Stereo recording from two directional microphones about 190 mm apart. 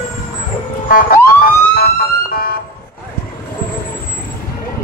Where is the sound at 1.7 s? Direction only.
50° left (ahead or behind).